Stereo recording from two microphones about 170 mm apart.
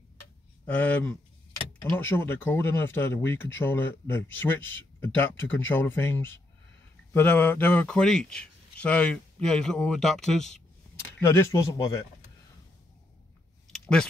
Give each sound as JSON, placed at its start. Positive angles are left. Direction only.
{"t": 0.7, "sound": "speech", "side_deg": 10}
{"t": 11.1, "sound": "speech", "side_deg": 15}
{"t": 13.7, "sound": "a sound", "side_deg": 5}